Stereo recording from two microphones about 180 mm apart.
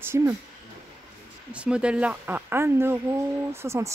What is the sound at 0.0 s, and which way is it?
Speech, 15° right (ahead or behind).